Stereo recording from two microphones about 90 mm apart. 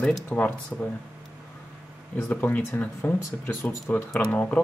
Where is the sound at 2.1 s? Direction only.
20° left (ahead or behind).